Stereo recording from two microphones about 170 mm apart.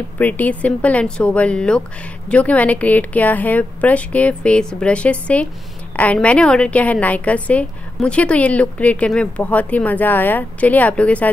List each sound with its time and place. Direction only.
0.2 s a woman's voice: 10° left (ahead or behind)